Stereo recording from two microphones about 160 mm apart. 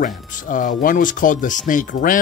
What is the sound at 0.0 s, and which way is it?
Speech, 55° left (ahead or behind).